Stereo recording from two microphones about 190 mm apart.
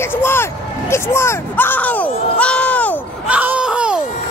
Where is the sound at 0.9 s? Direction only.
15° left (ahead or behind).